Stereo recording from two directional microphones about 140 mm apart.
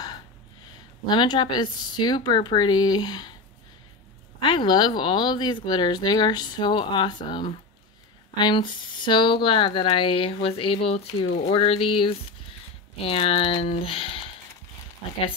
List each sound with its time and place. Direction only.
1.0 s speech: 30° left (ahead or behind)
4.4 s speech: 35° left (ahead or behind)